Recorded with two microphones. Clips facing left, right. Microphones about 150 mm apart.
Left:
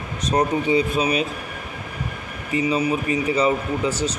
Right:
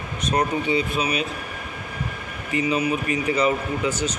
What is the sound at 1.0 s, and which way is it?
Speech, 45° left (ahead or behind).